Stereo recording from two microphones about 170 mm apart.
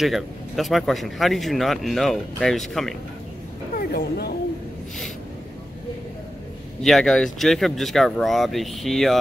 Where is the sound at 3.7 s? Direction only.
65° left (ahead or behind).